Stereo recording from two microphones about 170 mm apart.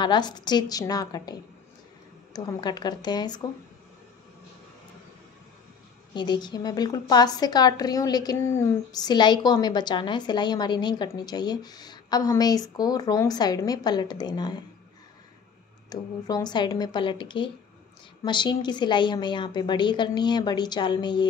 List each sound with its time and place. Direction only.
0.0 s a woman's voice: 25° left (ahead or behind)
6.1 s a woman's voice: 25° left (ahead or behind)
15.9 s a woman's voice: 25° left (ahead or behind)